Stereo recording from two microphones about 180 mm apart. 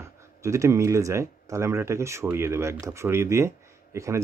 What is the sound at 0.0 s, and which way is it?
Speech, 15° right (ahead or behind).